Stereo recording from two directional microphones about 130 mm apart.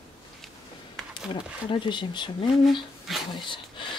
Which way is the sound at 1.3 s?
40° left (ahead or behind).